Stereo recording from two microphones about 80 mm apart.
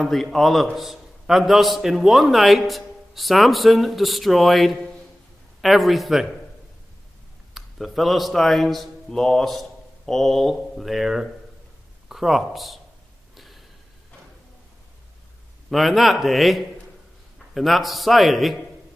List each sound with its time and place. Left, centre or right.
0.0 s a man's voice: centre
7.5 s a man's voice: centre
13.4 s a sound: centre
15.7 s a man's voice: centre